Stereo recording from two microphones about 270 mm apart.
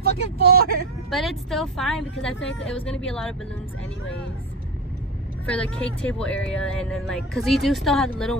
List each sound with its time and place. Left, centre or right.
0.0 s speech: right
1.1 s speech: centre
5.5 s speech: centre